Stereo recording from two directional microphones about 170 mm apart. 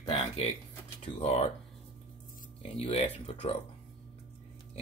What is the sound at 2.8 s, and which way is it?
Speech, 35° left (ahead or behind).